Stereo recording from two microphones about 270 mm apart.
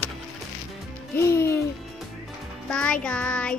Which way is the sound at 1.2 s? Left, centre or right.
Centre.